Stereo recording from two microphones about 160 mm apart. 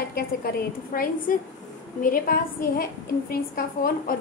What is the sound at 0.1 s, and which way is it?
A woman's voice, 65° left (ahead or behind).